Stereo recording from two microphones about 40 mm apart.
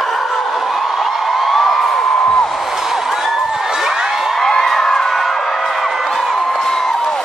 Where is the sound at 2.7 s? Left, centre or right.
Centre.